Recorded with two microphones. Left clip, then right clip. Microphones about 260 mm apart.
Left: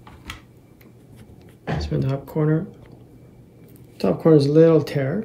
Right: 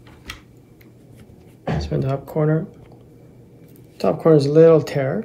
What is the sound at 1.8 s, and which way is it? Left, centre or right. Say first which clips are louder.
Speech: right 3 dB; centre.